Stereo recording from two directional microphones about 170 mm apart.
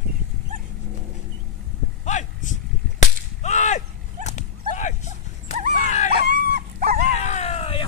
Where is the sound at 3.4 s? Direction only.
45° left (ahead or behind).